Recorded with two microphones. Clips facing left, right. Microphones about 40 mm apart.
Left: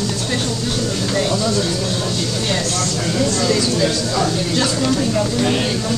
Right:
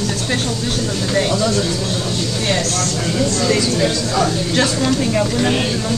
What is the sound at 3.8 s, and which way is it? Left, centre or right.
Speech, centre.